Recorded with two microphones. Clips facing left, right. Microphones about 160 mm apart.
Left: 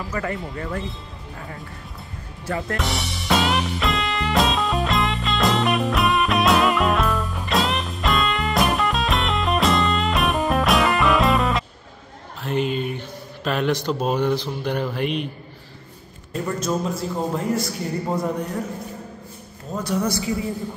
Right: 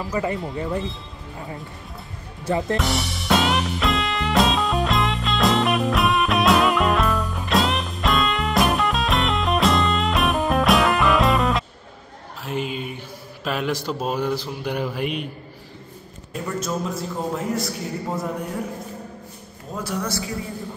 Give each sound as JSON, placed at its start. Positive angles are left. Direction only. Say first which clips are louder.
{"t": 0.1, "sound": "speech", "louder": "right 3 dB", "side_deg": -15}
{"t": 2.4, "sound": "speech", "louder": "right 4 dB", "side_deg": -20}
{"t": 2.8, "sound": "music", "louder": "right 2 dB", "side_deg": 0}
{"t": 12.4, "sound": "speech", "louder": "left 4 dB", "side_deg": -5}
{"t": 16.5, "sound": "a man's voice", "louder": "left 1 dB", "side_deg": 0}
{"t": 19.7, "sound": "speech", "louder": "left 2 dB", "side_deg": -10}